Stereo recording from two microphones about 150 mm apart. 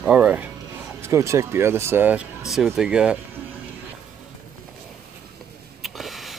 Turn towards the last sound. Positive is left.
turn(degrees=0)  # may be behind; listen again after turning